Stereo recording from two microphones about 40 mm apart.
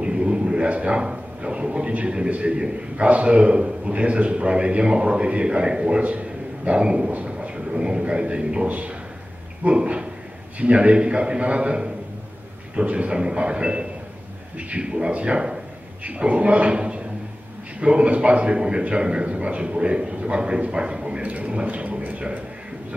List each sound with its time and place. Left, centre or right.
0.0 s a man's voice: right
8.6 s speech: right
9.7 s a man's voice: right
21.2 s speech: right